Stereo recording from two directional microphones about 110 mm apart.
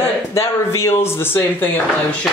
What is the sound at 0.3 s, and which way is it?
Speech, 25° left (ahead or behind).